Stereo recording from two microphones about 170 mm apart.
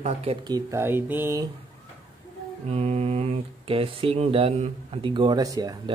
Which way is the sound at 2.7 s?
40° right (ahead or behind).